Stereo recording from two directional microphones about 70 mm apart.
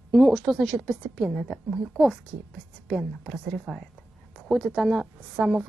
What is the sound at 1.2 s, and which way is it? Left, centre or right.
Speech, centre.